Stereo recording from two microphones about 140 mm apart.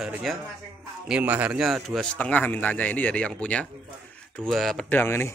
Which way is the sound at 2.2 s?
10° left (ahead or behind).